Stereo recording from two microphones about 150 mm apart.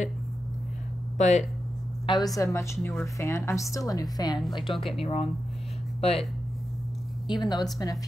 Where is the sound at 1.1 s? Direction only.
50° left (ahead or behind).